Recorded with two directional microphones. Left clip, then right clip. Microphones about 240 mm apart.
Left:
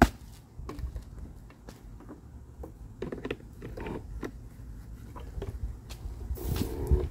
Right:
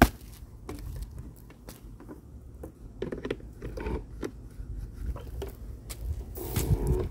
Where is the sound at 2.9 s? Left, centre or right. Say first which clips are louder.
Right 2 dB; right.